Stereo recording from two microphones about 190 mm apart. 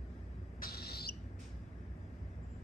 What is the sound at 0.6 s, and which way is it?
Owl, 55° left (ahead or behind).